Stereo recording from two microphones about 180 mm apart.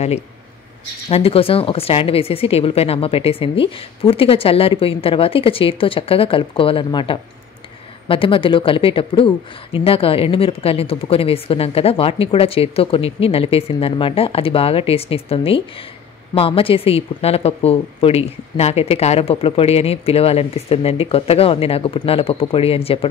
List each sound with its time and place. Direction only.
1.1 s a woman's voice: 30° left (ahead or behind)